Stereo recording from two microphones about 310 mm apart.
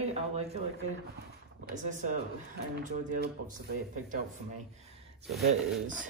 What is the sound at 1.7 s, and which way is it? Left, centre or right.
Speech, right.